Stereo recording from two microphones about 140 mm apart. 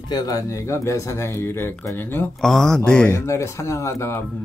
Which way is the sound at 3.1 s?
20° left (ahead or behind).